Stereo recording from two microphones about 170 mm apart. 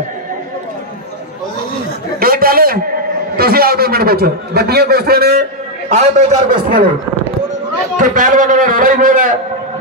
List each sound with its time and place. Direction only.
2.1 s a sound: 60° right (ahead or behind)
3.3 s a man's voice: 60° right (ahead or behind)
5.9 s a man's voice: 40° right (ahead or behind)
8.0 s a man's voice: 50° right (ahead or behind)